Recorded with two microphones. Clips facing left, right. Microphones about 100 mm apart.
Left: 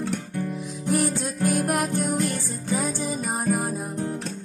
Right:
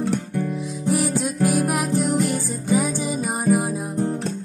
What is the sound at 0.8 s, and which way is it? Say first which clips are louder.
Music: right 2 dB; centre (ahead or behind).